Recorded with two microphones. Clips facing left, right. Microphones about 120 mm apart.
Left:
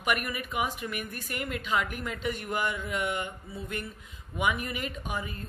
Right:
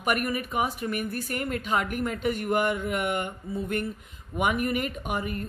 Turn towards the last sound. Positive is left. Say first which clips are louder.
# right 5 dB
turn(degrees=-55)  # may be behind; listen again after turning